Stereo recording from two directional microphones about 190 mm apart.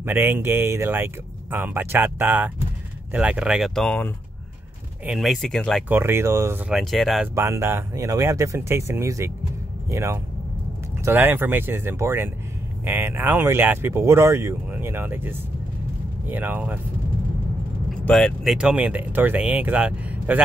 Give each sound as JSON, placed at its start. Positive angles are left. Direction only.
{"t": 0.0, "sound": "speech", "side_deg": -10}
{"t": 5.9, "sound": "speech", "side_deg": -10}
{"t": 6.7, "sound": "speech", "side_deg": 0}
{"t": 7.3, "sound": "speech", "side_deg": -15}
{"t": 18.0, "sound": "speech", "side_deg": 5}